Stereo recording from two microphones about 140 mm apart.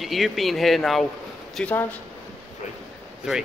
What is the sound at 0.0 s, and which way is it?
Speech, centre (ahead or behind).